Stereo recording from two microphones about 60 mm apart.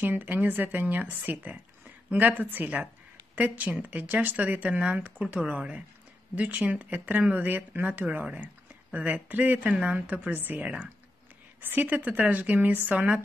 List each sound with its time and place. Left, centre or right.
0.0 s a woman's voice: right